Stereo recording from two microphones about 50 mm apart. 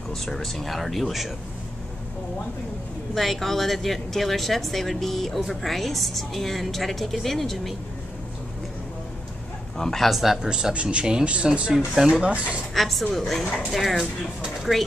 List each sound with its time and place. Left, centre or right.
0.1 s speech: centre
3.2 s speech: centre
9.8 s a man's voice: centre
10.0 s speech: centre
10.7 s speech: right
12.7 s a woman's voice: centre